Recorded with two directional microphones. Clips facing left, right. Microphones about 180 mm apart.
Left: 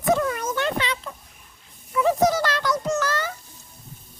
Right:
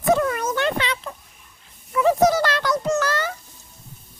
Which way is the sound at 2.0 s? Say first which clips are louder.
Right 3 dB; 65° right (ahead or behind).